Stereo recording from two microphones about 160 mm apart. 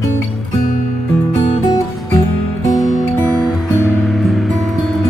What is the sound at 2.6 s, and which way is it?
Music, 20° left (ahead or behind).